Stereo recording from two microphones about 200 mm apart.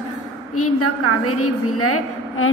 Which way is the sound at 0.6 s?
90° left.